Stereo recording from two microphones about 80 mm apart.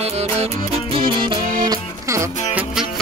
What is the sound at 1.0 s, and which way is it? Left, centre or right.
Music, right.